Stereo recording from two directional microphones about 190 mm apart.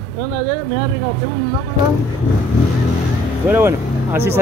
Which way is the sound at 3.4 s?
10° right (ahead or behind).